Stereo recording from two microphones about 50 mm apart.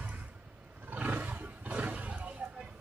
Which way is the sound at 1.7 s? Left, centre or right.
Right.